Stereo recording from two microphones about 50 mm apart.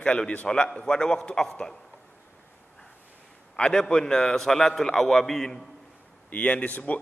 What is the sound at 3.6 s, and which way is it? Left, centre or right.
A man's voice, centre.